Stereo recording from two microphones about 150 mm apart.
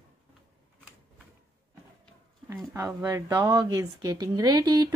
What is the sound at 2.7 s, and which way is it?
Speech, 20° right (ahead or behind).